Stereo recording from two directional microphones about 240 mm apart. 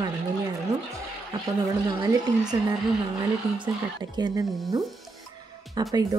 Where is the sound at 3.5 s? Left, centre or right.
Centre.